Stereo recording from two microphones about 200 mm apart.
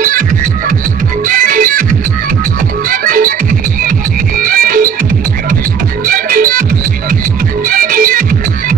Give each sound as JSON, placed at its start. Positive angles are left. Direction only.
{"t": 1.2, "sound": "music", "side_deg": -45}
{"t": 4.4, "sound": "music", "side_deg": -45}
{"t": 6.0, "sound": "music", "side_deg": -45}
{"t": 7.6, "sound": "music", "side_deg": -45}